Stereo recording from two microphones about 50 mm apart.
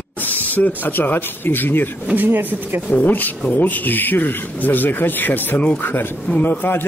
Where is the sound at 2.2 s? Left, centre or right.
Right.